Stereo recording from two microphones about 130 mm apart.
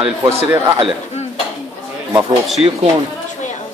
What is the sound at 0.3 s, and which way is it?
Speech, 20° right (ahead or behind).